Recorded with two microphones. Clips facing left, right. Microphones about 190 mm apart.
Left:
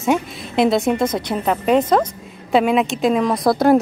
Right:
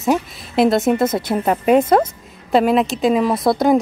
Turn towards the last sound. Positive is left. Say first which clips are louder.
# left 1 dB
turn(degrees=0)  # may be behind; listen again after turning